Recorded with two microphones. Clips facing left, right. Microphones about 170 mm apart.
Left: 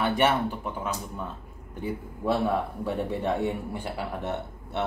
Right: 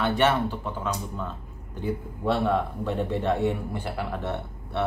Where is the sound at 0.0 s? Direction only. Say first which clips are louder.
Right 1 dB; 10° left (ahead or behind).